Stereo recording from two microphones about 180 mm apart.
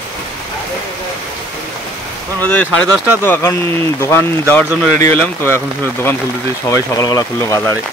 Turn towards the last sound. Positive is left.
turn(degrees=20)  # may be behind; listen again after turning